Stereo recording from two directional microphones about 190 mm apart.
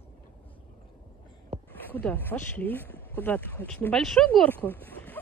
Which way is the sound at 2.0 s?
10° left (ahead or behind).